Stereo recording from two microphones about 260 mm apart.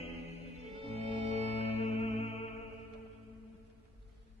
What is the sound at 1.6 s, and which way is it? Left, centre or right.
Music, left.